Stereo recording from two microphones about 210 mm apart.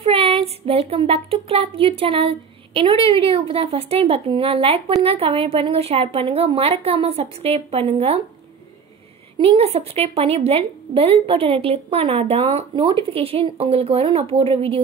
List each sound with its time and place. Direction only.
0.0 s speech: 25° right (ahead or behind)
9.4 s speech: 30° right (ahead or behind)